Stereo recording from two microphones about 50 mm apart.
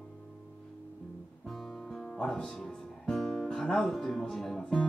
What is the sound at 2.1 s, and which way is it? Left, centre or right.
Music, centre.